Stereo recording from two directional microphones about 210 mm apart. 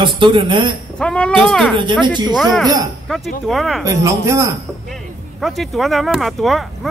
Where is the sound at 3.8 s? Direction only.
15° right (ahead or behind).